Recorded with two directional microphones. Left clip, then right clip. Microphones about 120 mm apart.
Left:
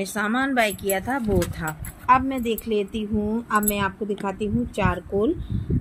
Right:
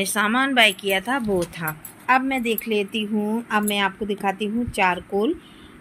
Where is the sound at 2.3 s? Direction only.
15° right (ahead or behind).